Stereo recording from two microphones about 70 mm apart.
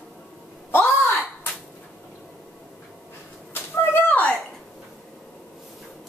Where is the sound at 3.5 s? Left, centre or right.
Left.